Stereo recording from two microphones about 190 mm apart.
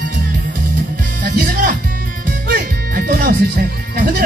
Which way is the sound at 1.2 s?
55° right (ahead or behind).